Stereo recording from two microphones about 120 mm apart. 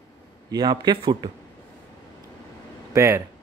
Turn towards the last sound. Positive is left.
turn(degrees=-25)  # may be behind; listen again after turning